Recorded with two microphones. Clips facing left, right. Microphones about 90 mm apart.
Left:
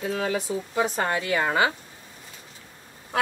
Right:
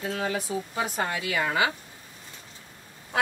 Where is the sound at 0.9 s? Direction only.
40° left (ahead or behind).